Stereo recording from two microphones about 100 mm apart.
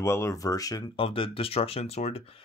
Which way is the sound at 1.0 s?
65° left (ahead or behind).